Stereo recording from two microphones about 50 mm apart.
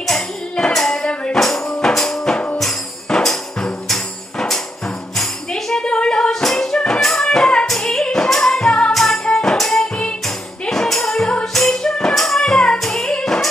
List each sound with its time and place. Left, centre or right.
0.0 s tambourine: centre
0.9 s music: centre
1.3 s tambourine: centre
1.9 s music: centre
2.3 s music: left
3.1 s music: centre
5.5 s a sound: centre
6.4 s music: centre
10.2 s music: centre